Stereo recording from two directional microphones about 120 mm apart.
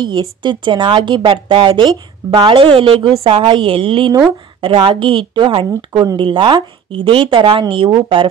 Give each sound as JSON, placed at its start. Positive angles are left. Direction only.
{"t": 0.0, "sound": "a woman's voice", "side_deg": -40}